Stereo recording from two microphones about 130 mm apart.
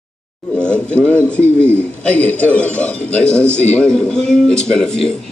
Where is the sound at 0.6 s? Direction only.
10° left (ahead or behind).